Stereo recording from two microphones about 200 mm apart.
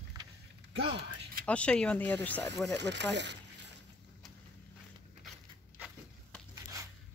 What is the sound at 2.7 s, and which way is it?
Speech, 60° right (ahead or behind).